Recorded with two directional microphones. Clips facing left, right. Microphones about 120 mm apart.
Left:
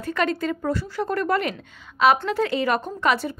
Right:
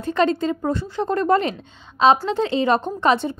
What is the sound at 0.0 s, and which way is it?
A woman's voice, 25° right (ahead or behind).